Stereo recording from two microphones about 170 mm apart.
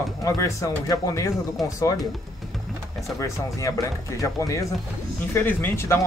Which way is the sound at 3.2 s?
20° left (ahead or behind).